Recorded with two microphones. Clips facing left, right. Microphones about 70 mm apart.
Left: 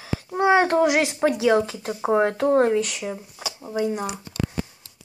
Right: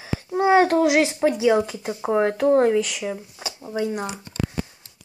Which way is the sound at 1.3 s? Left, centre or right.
Centre.